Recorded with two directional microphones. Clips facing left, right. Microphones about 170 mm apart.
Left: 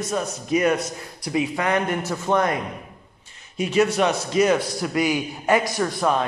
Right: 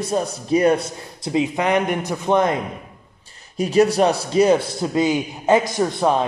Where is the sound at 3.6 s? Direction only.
35° right (ahead or behind).